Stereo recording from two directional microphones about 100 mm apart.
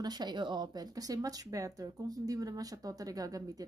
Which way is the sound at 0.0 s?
45° right (ahead or behind).